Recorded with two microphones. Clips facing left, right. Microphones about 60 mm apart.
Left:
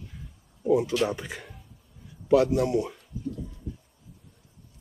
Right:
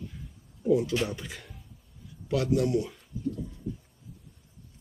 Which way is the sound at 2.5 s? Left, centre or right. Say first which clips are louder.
Left 1 dB; left.